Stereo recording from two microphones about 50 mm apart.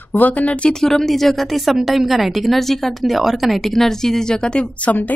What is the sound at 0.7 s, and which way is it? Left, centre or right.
A woman's voice, centre.